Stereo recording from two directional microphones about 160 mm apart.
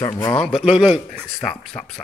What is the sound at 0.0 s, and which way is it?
Speech, 15° left (ahead or behind).